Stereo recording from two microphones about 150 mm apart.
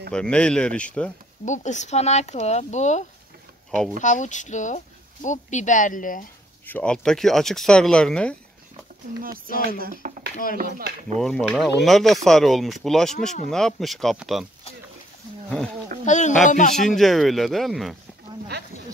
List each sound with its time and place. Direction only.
0.1 s speech: 5° left (ahead or behind)
1.4 s speech: 55° left (ahead or behind)
6.6 s speech: 10° left (ahead or behind)
9.7 s speech: 75° right (ahead or behind)
10.3 s speech: 65° left (ahead or behind)
11.1 s speech: 5° left (ahead or behind)
16.1 s speech: 50° left (ahead or behind)
16.7 s speech: centre (ahead or behind)